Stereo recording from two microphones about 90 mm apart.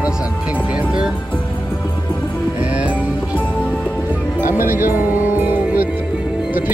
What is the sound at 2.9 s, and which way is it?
Music, 15° left (ahead or behind).